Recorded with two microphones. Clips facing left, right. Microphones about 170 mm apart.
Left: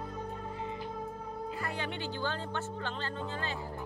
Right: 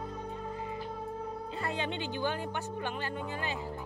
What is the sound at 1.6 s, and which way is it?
Speech, 20° right (ahead or behind).